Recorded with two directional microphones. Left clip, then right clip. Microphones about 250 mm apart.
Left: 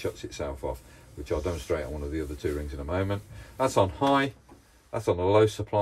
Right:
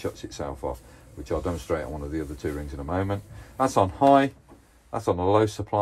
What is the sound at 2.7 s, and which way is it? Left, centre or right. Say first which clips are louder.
Speech: right 2 dB; centre.